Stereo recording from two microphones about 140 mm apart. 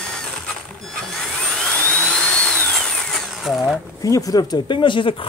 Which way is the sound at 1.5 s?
5° left (ahead or behind).